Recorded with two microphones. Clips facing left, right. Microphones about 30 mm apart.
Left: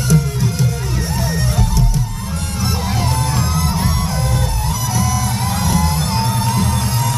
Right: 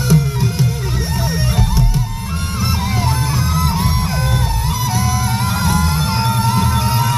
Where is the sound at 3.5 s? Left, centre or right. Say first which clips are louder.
Right 1 dB; centre.